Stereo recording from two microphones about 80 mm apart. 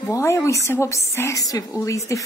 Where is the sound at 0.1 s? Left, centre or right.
Left.